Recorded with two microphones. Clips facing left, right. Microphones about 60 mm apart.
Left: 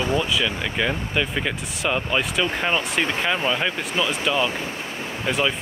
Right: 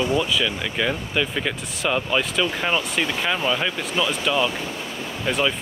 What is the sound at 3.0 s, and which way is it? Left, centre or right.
Speech, left.